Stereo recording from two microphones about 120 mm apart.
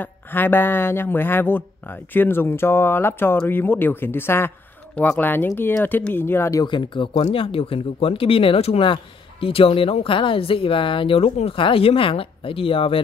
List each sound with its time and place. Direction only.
0.0 s speech: 15° left (ahead or behind)
6.6 s speech: 40° left (ahead or behind)